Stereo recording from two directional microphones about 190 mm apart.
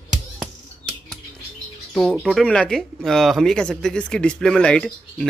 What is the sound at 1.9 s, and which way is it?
Speech, centre (ahead or behind).